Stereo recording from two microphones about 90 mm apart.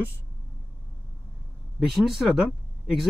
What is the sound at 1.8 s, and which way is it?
Speech, centre (ahead or behind).